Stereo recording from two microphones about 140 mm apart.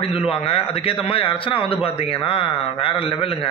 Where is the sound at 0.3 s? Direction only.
45° left (ahead or behind).